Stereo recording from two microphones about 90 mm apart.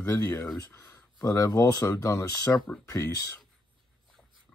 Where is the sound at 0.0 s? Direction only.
35° left (ahead or behind).